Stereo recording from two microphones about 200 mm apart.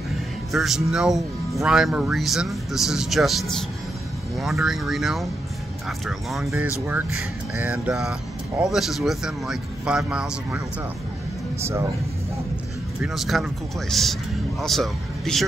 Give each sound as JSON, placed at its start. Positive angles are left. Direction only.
{"t": 0.5, "sound": "speech", "side_deg": 0}
{"t": 11.6, "sound": "speech", "side_deg": -15}
{"t": 13.0, "sound": "speech", "side_deg": 0}